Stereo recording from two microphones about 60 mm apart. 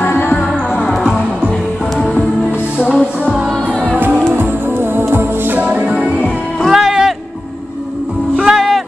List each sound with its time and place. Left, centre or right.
0.0 s music: left
1.0 s music: right
3.3 s music: right
4.3 s music: right; by 7.2 s centre
8.4 s music: centre